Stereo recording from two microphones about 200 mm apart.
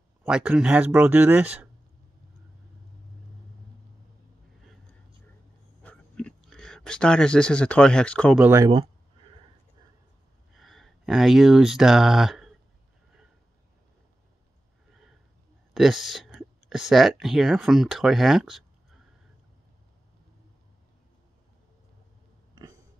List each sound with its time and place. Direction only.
0.2 s speech: 5° right (ahead or behind)
5.8 s a sound: 5° left (ahead or behind)
8.4 s speech: 15° right (ahead or behind)
10.5 s speech: centre (ahead or behind)
15.7 s speech: centre (ahead or behind)